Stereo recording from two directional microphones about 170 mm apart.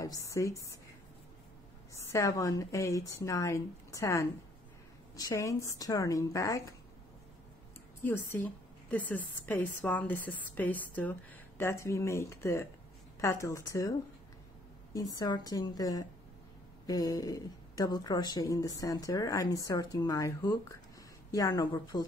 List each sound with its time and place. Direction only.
0.0 s speech: 20° left (ahead or behind)
2.0 s a woman's voice: 15° left (ahead or behind)
8.0 s a woman's voice: 10° left (ahead or behind)
15.0 s speech: 20° left (ahead or behind)